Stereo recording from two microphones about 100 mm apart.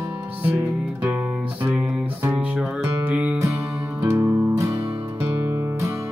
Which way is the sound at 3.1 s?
15° right (ahead or behind).